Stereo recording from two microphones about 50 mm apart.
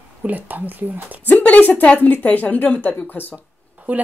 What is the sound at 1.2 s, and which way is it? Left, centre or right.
A woman's voice, left.